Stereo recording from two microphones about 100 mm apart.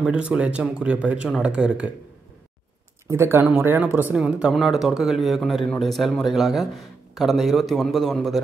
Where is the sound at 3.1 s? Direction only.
25° right (ahead or behind).